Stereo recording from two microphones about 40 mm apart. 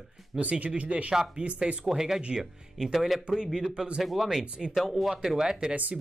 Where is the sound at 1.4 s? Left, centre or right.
Right.